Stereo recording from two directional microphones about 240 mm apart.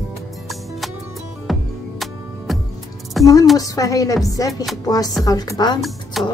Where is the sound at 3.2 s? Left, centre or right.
Centre.